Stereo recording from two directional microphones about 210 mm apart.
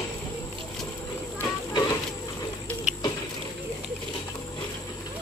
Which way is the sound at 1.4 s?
20° left (ahead or behind).